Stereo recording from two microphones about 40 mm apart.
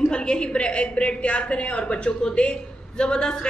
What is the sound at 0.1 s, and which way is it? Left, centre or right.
A woman's voice, left.